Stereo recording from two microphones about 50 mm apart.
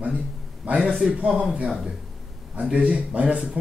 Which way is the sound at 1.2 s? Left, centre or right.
Right.